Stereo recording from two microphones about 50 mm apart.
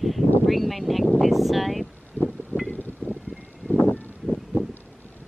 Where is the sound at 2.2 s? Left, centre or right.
Left.